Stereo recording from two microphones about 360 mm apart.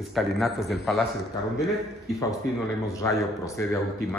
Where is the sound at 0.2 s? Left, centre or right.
Centre.